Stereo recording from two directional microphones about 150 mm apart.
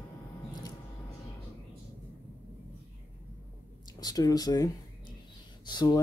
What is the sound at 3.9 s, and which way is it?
Speech, 25° left (ahead or behind).